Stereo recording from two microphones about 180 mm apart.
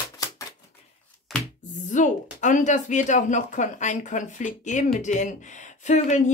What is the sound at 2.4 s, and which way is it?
Speech, 40° left (ahead or behind).